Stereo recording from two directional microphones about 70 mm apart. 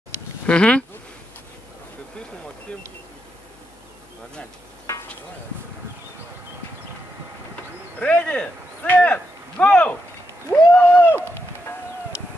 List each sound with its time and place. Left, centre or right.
0.5 s speech: centre
8.0 s speech: centre